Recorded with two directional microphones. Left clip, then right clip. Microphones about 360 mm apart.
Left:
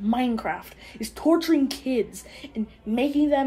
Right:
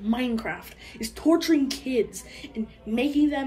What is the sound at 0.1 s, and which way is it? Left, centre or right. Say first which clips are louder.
A woman's voice: left 2 dB; left.